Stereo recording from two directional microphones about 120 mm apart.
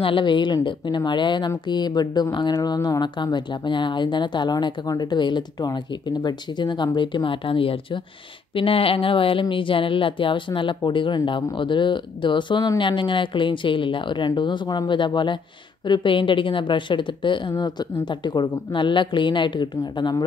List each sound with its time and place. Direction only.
0.0 s speech: 45° left (ahead or behind)